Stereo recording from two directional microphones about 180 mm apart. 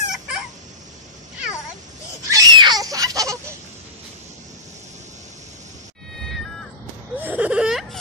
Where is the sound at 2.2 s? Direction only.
20° right (ahead or behind).